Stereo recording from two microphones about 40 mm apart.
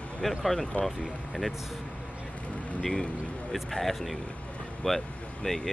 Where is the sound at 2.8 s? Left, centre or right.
Centre.